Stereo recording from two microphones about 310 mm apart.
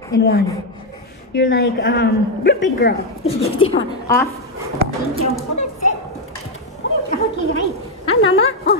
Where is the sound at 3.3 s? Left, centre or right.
Centre.